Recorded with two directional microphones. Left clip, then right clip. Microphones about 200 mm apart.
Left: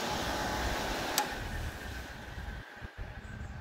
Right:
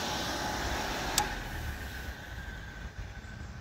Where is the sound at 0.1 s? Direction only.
20° left (ahead or behind).